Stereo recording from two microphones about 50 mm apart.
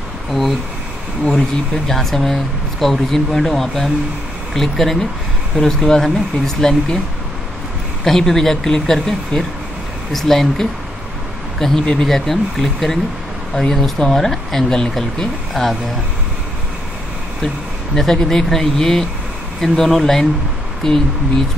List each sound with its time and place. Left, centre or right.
0.3 s speech: centre
1.9 s speech: centre
8.0 s speech: centre
9.3 s speech: left
10.1 s speech: centre
11.8 s speech: centre
17.9 s speech: centre